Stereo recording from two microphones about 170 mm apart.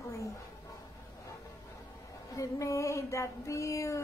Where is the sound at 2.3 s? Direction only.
20° left (ahead or behind).